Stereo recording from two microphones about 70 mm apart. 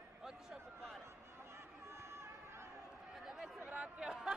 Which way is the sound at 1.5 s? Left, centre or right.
Right.